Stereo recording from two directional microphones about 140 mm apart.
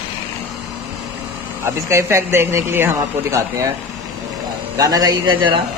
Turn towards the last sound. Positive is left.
turn(degrees=-30)  # may be behind; listen again after turning